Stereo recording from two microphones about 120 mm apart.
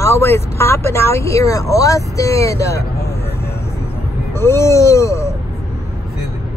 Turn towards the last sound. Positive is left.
turn(degrees=25)  # may be behind; listen again after turning